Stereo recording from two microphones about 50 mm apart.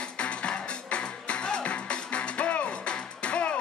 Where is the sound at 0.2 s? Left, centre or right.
Left.